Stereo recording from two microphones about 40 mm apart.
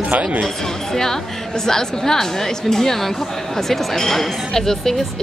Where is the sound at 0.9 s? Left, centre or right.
Centre.